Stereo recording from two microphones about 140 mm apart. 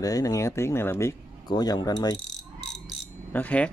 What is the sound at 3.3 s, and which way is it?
Speech, 10° left (ahead or behind).